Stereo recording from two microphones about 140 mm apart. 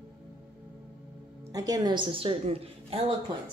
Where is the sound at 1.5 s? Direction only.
25° right (ahead or behind); by 3.0 s 45° right (ahead or behind).